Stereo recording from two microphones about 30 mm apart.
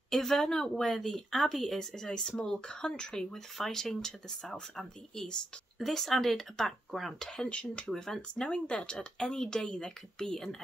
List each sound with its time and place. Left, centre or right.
0.1 s speech: centre
3.5 s speech: centre
5.8 s speech: centre
7.2 s speech: left
7.4 s speech: left
7.9 s speech: centre
8.5 s speech: left
8.9 s speech: left